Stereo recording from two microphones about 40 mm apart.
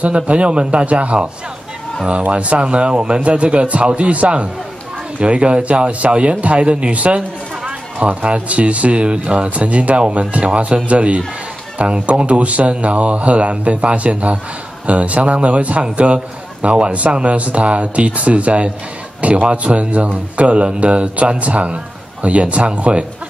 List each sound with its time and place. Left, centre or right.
0.0 s a man's voice: right